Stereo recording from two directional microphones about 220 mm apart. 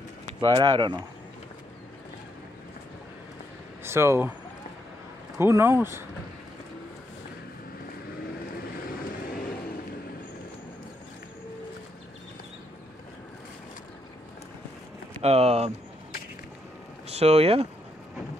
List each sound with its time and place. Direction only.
0.4 s speech: 20° right (ahead or behind)
3.8 s speech: 10° right (ahead or behind)
5.4 s speech: 10° right (ahead or behind)
8.8 s vehicle: 40° left (ahead or behind)
15.2 s speech: 30° right (ahead or behind)
17.1 s speech: 30° right (ahead or behind)